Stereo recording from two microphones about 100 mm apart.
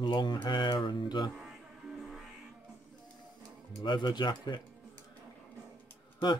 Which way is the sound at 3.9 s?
50° left (ahead or behind).